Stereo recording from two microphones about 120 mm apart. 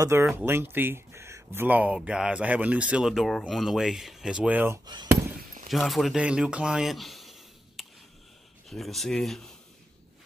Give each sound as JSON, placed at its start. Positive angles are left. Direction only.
{"t": 0.0, "sound": "speech", "side_deg": -25}
{"t": 5.7, "sound": "speech", "side_deg": 0}